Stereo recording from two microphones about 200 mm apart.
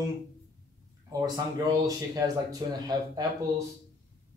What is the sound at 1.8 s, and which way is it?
Speech, 15° right (ahead or behind).